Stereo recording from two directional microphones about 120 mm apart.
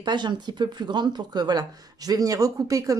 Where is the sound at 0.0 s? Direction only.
40° right (ahead or behind).